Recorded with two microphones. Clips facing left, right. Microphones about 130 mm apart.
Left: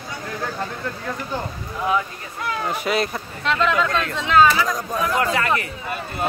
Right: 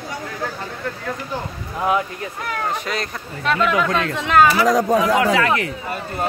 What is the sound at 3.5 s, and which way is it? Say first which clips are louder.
Speech: right 1 dB; 10° right (ahead or behind).